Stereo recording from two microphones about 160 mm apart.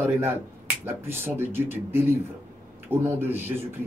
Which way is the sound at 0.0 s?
15° right (ahead or behind).